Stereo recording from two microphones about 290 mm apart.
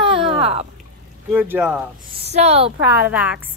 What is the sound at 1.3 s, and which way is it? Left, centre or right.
Speech, centre.